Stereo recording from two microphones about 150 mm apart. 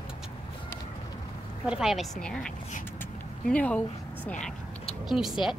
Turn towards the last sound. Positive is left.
turn(degrees=0)  # may be behind; listen again after turning